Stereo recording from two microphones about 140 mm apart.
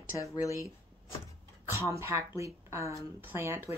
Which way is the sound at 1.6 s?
20° right (ahead or behind).